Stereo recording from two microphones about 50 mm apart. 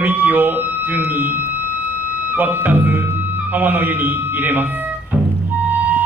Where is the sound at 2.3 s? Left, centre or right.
Right.